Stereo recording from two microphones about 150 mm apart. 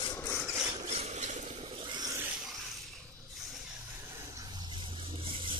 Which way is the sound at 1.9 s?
25° right (ahead or behind).